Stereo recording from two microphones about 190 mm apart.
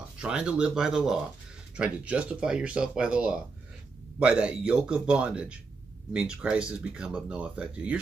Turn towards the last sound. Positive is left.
turn(degrees=-5)  # may be behind; listen again after turning